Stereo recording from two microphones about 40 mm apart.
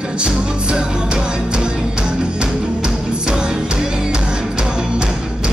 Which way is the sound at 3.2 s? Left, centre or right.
Right.